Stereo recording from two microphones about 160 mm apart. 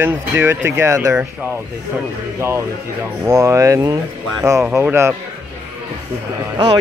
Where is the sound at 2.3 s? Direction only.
15° right (ahead or behind).